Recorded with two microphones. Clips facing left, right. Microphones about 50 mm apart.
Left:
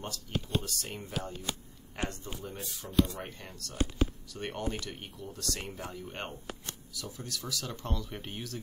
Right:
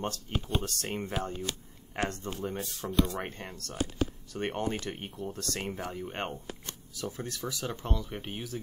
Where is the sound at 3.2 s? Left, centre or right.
Right.